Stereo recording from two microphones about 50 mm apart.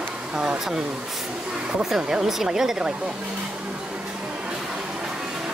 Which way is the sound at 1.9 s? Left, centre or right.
Centre.